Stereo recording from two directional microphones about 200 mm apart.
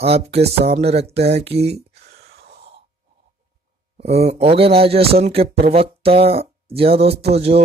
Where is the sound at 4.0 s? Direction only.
30° right (ahead or behind).